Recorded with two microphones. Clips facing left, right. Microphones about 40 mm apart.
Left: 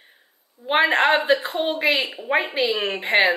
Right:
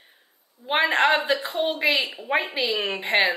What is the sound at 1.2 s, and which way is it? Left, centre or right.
A woman's voice, left.